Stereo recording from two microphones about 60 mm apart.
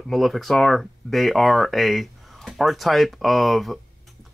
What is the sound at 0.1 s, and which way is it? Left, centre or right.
Speech, centre.